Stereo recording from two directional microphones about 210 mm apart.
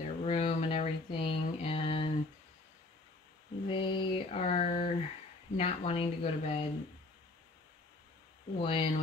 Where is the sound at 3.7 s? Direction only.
25° left (ahead or behind).